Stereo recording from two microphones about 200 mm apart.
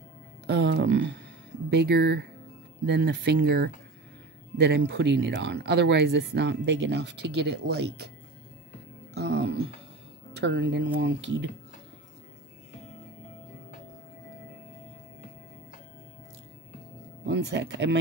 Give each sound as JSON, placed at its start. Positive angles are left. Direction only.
{"t": 0.5, "sound": "speech", "side_deg": -55}
{"t": 9.1, "sound": "speech", "side_deg": -60}
{"t": 17.3, "sound": "speech", "side_deg": -60}